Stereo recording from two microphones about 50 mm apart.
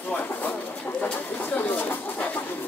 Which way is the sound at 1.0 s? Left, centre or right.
Left.